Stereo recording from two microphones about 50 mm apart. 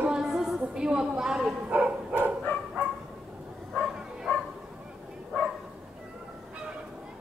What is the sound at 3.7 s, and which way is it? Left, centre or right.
Bow-wow, centre.